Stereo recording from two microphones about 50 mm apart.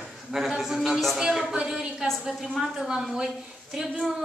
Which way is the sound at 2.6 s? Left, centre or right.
Centre.